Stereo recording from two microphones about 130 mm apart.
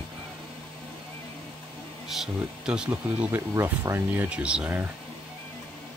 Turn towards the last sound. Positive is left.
turn(degrees=-10)  # may be behind; listen again after turning